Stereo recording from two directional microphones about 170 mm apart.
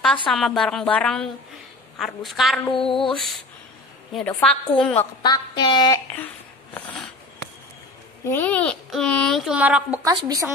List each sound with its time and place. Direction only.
0.3 s speech: centre (ahead or behind)
2.7 s a woman's voice: 30° left (ahead or behind)
3.0 s speech: centre (ahead or behind)
5.2 s a woman's voice: 25° left (ahead or behind)
6.1 s a sound: 10° left (ahead or behind)
8.3 s speech: 10° left (ahead or behind); by 9.9 s 10° right (ahead or behind)
10.0 s a woman's voice: 20° right (ahead or behind)